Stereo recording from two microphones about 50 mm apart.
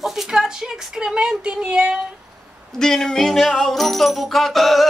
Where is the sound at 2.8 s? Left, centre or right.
Centre.